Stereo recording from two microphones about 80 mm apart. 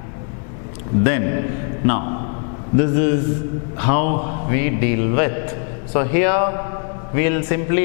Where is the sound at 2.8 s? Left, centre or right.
Centre.